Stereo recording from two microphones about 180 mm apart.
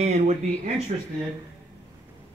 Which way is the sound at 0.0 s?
40° right (ahead or behind).